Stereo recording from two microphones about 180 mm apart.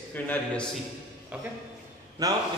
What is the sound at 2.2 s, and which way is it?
Speech, 20° right (ahead or behind).